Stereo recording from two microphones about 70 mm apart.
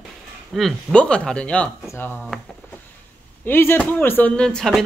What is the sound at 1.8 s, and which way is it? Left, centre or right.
Speech, left.